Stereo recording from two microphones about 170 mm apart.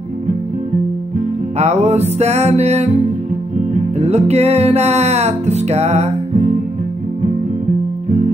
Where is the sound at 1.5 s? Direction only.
40° right (ahead or behind).